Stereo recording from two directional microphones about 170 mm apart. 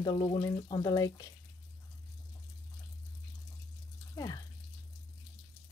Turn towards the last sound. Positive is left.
turn(degrees=20)  # may be behind; listen again after turning